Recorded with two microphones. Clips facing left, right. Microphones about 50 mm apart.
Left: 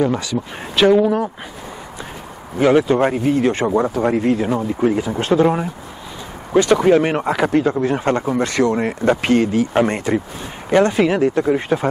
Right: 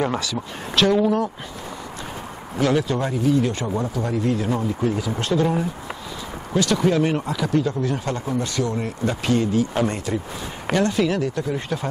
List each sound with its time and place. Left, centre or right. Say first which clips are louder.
0.2 s speech: left 4 dB; centre
2.6 s speech: left 7 dB; left
3.0 s speech: left 4 dB; left
8.4 s speech: left 7 dB; left
9.1 s speech: left 5 dB; left